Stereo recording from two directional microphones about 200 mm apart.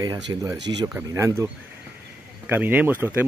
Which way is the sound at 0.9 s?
15° right (ahead or behind).